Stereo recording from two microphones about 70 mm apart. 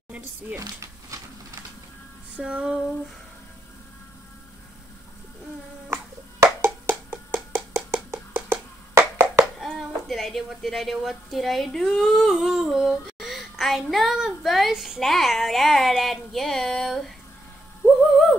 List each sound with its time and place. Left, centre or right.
0.6 s a sound: right
2.3 s music: centre
6.4 s hands: right
9.6 s a woman's voice: centre
14.7 s child singing: centre